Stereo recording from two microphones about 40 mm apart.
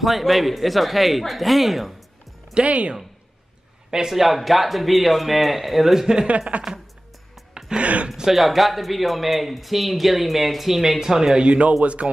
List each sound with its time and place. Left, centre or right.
0.0 s speech: centre
2.5 s speech: right
4.1 s speech: centre
6.2 s speech: right
7.7 s speech: right
8.3 s speech: centre
11.3 s speech: right